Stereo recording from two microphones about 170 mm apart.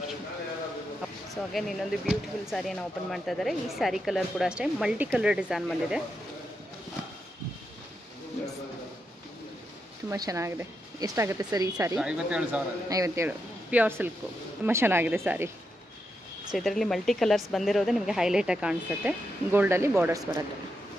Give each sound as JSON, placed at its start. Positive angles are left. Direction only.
{"t": 1.3, "sound": "speech", "side_deg": 0}
{"t": 10.0, "sound": "speech", "side_deg": -20}
{"t": 12.0, "sound": "speech", "side_deg": -5}
{"t": 12.9, "sound": "speech", "side_deg": -20}
{"t": 16.5, "sound": "speech", "side_deg": 0}